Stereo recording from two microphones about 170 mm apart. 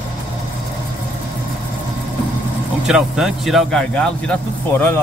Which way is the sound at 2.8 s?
5° right (ahead or behind).